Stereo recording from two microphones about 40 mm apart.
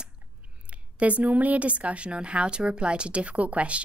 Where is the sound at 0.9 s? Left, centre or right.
Right.